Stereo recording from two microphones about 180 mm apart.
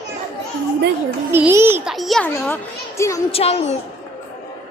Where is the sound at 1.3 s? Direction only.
15° right (ahead or behind).